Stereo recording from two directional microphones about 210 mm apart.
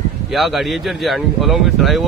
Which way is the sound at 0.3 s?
Centre (ahead or behind).